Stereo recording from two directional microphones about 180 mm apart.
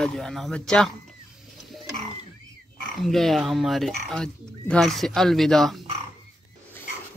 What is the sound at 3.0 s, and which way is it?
Speech, centre (ahead or behind).